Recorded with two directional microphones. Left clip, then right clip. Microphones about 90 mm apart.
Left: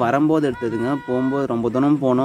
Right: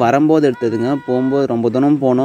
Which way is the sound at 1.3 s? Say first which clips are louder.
Right 5 dB; 30° right (ahead or behind).